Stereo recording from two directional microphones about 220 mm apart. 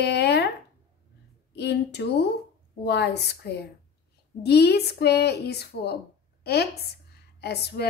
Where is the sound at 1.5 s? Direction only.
50° left (ahead or behind).